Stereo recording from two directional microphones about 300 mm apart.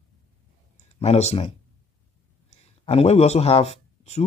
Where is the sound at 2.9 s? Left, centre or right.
Left.